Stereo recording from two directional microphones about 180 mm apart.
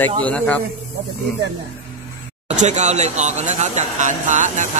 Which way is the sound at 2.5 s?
40° right (ahead or behind).